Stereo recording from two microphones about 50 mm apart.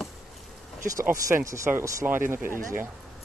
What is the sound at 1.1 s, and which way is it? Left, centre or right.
Speech, right.